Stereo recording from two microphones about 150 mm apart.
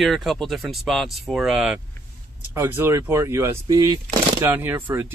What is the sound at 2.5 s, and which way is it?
Speech, 15° right (ahead or behind).